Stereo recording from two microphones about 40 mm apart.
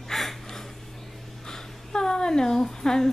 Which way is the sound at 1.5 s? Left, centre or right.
Centre.